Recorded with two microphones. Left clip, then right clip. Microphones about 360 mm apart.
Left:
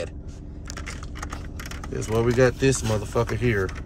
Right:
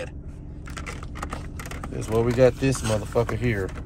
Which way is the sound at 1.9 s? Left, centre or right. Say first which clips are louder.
Left 1 dB; centre.